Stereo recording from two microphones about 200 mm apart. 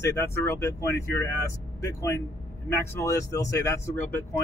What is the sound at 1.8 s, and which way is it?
Speech, 15° left (ahead or behind).